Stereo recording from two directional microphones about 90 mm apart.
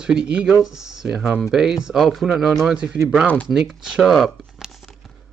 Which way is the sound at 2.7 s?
10° right (ahead or behind).